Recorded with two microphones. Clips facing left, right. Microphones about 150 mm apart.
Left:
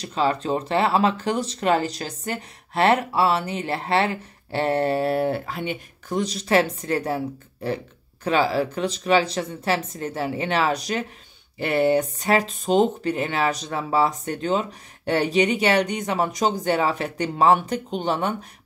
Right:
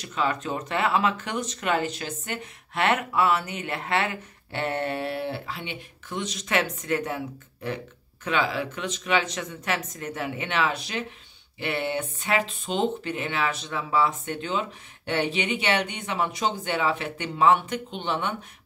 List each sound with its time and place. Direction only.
0.0 s speech: 30° left (ahead or behind)